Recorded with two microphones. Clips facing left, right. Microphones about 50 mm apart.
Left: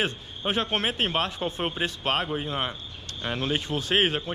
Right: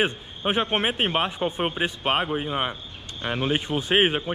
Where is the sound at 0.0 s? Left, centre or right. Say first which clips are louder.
Right 4 dB; centre.